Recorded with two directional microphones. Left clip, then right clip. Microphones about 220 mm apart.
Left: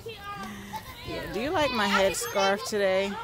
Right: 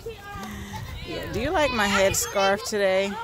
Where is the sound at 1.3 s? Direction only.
5° right (ahead or behind).